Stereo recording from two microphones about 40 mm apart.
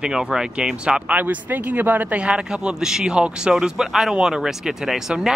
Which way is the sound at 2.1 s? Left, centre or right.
Right.